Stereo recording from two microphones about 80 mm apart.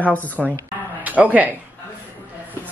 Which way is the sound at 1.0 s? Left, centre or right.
Right.